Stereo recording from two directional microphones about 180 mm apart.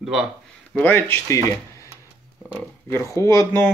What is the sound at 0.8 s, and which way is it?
Speech, 10° left (ahead or behind).